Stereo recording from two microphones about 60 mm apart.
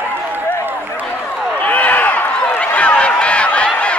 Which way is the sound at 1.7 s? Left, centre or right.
Left.